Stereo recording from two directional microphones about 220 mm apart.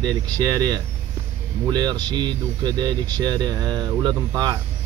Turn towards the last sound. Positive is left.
turn(degrees=-20)  # may be behind; listen again after turning